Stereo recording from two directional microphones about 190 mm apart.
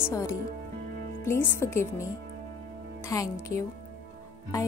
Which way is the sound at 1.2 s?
15° left (ahead or behind).